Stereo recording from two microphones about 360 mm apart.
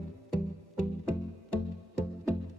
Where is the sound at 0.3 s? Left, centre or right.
Left.